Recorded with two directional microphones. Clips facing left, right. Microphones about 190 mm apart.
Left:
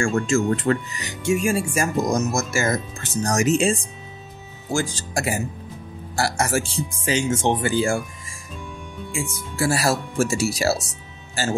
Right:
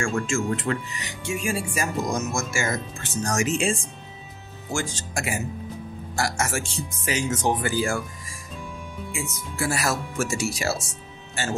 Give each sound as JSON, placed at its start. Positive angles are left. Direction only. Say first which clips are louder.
{"t": 0.0, "sound": "speech", "louder": "left 5 dB", "side_deg": 40}
{"t": 9.1, "sound": "speech", "louder": "left 5 dB", "side_deg": 30}